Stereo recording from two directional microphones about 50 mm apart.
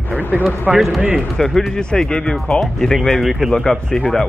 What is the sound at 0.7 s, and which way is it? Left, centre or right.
Speech, centre.